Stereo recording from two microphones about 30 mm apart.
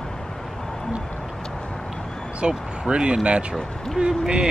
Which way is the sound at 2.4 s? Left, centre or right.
Right.